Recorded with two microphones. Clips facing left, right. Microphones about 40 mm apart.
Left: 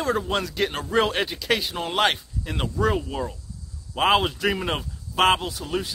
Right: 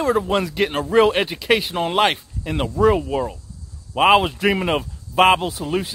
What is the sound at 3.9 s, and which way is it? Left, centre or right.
Speech, right.